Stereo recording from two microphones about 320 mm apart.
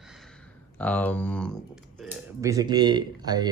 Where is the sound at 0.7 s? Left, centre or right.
Centre.